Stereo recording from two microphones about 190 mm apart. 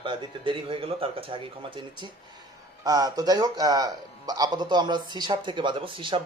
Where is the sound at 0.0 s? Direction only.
25° right (ahead or behind).